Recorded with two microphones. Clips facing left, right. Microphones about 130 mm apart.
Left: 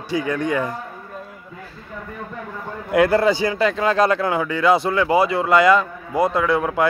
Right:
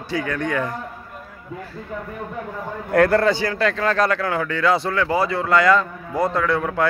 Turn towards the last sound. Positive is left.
turn(degrees=15)  # may be behind; listen again after turning